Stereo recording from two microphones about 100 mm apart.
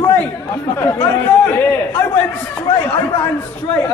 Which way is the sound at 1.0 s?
20° left (ahead or behind).